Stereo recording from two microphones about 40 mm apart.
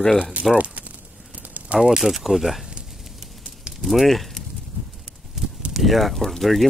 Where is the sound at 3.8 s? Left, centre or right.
Centre.